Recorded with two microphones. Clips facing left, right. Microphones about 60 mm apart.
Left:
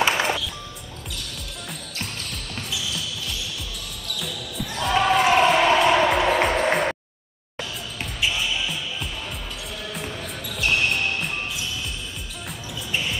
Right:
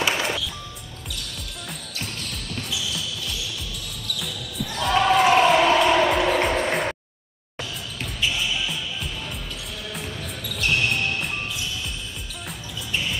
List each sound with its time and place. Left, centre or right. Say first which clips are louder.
0.0 s music: left 3 dB; left
4.2 s basketball bounce: left 1 dB; centre
10.5 s music: left 1 dB; centre